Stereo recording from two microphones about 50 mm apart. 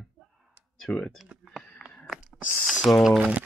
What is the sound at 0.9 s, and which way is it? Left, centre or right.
Speech, left.